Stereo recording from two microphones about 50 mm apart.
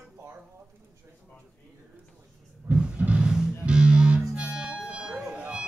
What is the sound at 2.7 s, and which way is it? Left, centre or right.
Music, right.